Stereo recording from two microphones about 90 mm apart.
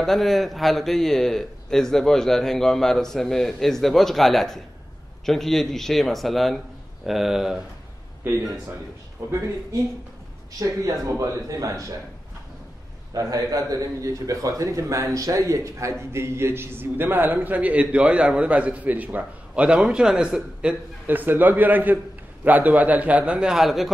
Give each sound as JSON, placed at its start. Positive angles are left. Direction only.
{"t": 0.0, "sound": "speech", "side_deg": 0}
{"t": 8.2, "sound": "a man's voice", "side_deg": -20}
{"t": 9.2, "sound": "a man's voice", "side_deg": -30}
{"t": 10.6, "sound": "a man's voice", "side_deg": -40}
{"t": 13.1, "sound": "a man's voice", "side_deg": -40}